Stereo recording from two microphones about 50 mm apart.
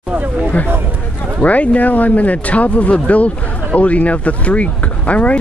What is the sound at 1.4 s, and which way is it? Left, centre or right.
Speech, left.